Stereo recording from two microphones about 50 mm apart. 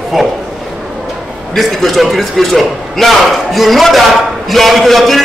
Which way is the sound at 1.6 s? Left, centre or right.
Centre.